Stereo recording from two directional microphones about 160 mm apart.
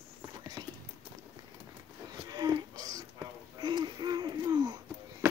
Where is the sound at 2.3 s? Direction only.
25° right (ahead or behind).